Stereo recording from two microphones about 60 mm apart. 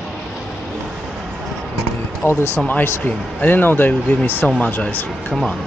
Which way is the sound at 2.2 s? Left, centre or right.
Left.